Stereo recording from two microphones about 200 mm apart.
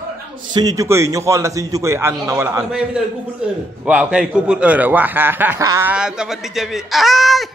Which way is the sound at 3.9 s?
5° right (ahead or behind).